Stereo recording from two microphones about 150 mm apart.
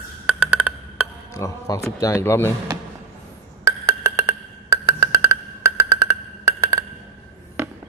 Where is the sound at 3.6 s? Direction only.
20° right (ahead or behind).